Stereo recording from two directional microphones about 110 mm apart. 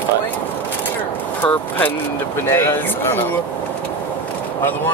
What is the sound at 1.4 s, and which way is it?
Speech, 15° left (ahead or behind).